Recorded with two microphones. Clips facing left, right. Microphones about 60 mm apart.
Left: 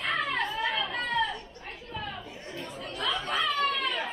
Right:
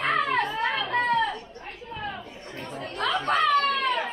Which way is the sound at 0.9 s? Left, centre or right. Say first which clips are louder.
Right 6 dB; right.